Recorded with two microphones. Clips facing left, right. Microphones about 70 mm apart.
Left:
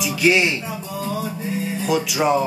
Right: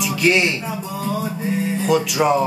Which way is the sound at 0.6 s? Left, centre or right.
Right.